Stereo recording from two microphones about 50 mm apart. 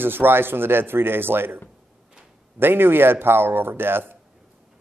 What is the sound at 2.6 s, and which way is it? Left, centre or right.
Speech, right.